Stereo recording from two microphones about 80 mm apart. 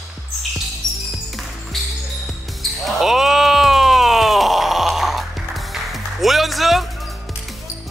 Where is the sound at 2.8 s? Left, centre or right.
Centre.